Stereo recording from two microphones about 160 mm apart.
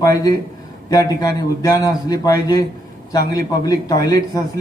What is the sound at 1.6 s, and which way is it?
A man's voice, 20° left (ahead or behind).